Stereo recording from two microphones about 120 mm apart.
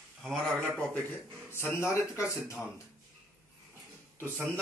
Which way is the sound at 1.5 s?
20° left (ahead or behind).